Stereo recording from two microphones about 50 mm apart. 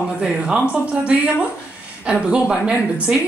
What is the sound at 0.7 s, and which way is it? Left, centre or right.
A woman's voice, right.